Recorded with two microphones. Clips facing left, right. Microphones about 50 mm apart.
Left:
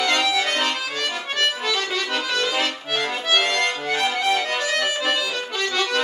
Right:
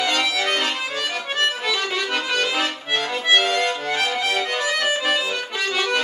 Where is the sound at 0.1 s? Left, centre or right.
Centre.